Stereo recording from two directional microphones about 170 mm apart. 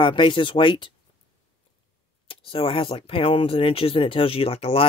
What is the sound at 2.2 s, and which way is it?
Speech, 35° left (ahead or behind).